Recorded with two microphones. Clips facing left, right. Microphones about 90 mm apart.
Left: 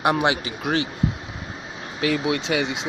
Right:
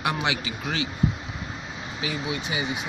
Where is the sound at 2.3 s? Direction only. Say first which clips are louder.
Left 6 dB; 80° left.